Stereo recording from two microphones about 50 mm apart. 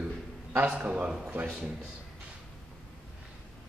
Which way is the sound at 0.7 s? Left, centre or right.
Right.